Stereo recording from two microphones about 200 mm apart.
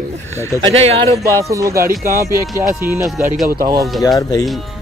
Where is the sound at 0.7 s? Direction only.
30° right (ahead or behind).